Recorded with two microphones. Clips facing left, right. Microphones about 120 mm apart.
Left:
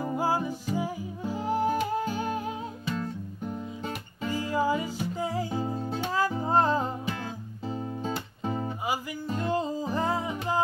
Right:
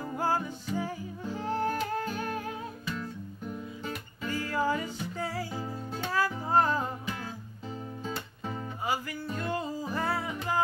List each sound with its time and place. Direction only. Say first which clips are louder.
0.0 s music: left 3 dB; 15° left (ahead or behind)
3.0 s guitar: left 4 dB; 25° left (ahead or behind)
4.3 s music: left 3 dB; 15° left (ahead or behind)
8.8 s music: left 1 dB; 15° left (ahead or behind)